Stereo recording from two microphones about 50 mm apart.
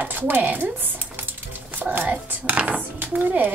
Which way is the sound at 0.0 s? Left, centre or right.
Right.